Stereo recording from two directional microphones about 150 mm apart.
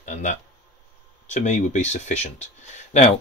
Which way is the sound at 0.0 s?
55° left (ahead or behind).